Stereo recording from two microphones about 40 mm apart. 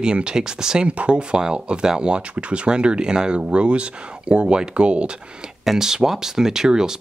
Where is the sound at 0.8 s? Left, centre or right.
Right.